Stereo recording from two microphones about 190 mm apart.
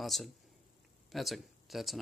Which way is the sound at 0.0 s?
Centre (ahead or behind).